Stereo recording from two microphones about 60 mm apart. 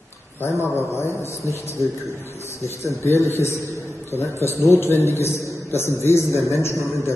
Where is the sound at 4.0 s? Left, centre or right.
Left.